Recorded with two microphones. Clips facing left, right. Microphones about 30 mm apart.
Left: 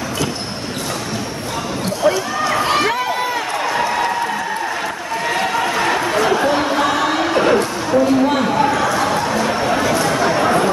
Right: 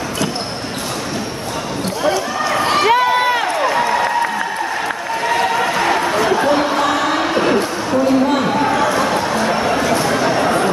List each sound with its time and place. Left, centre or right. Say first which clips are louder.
2.0 s run: left 1 dB; centre
2.9 s crowd: right 6 dB; right
3.6 s applause: even; centre
5.2 s a sound: right 2 dB; centre